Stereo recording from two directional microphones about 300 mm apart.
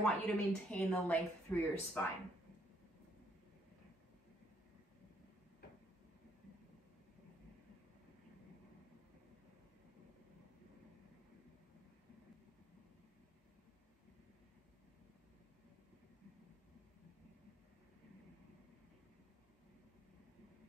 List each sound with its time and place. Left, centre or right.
0.0 s speech: centre